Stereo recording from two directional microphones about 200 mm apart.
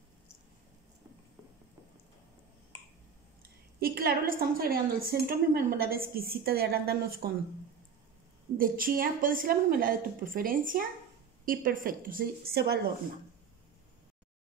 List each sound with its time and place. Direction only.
3.8 s a woman's voice: 45° right (ahead or behind)
8.5 s a woman's voice: 45° right (ahead or behind)